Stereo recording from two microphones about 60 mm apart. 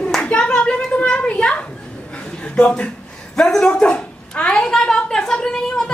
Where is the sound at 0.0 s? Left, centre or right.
Centre.